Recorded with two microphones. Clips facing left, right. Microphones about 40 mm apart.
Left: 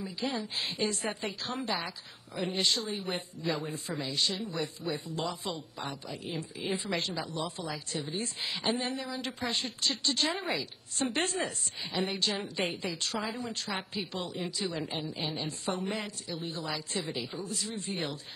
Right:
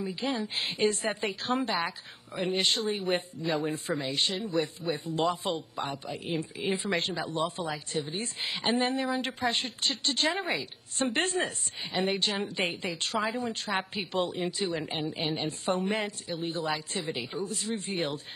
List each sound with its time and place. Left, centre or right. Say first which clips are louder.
0.0 s a woman's voice: right 3 dB; right
17.0 s a woman's voice: right 2 dB; right
17.4 s a woman's voice: right 4 dB; right